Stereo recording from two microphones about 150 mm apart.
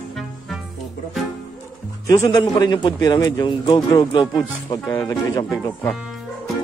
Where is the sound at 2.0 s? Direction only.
25° left (ahead or behind).